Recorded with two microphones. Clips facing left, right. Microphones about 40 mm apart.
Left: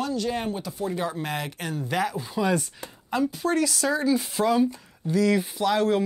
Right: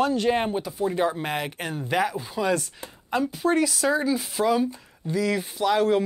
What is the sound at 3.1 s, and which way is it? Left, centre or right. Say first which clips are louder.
Speech: right 1 dB; centre.